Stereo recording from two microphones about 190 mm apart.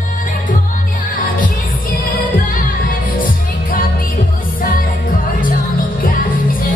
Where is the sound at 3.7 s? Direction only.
50° left (ahead or behind).